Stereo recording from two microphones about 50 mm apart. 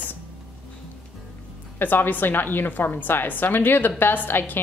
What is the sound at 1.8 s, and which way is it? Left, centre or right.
A woman's voice, left.